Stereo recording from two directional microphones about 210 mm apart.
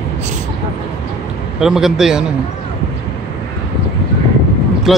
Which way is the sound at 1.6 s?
Centre (ahead or behind).